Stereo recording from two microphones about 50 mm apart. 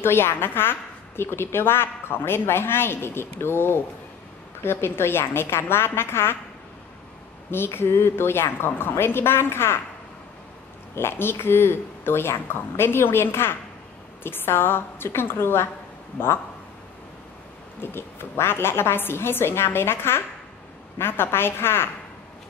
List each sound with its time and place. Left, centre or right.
0.0 s a woman's voice: left
7.5 s a woman's voice: left
11.0 s a woman's voice: left
17.7 s a woman's voice: left